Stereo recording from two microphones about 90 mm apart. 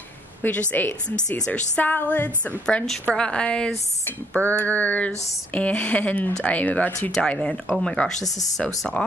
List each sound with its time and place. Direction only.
0.4 s speech: 20° left (ahead or behind)